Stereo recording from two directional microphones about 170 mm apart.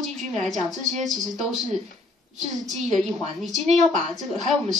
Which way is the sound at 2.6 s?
Centre (ahead or behind).